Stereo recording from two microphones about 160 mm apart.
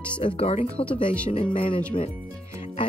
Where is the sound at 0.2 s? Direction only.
35° left (ahead or behind).